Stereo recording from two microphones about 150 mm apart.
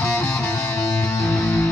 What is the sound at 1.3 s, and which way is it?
Music, 15° left (ahead or behind).